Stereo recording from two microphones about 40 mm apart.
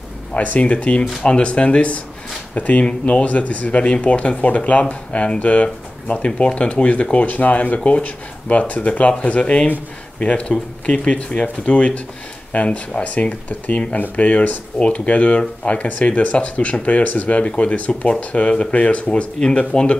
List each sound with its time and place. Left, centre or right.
0.3 s speech: left
2.9 s speech: left
3.3 s speech: left
19.7 s speech: left